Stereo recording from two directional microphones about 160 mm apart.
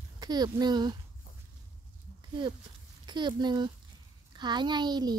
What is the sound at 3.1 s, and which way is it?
Speech, 25° right (ahead or behind).